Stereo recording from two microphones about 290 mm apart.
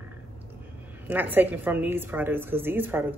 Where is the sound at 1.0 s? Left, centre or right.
Centre.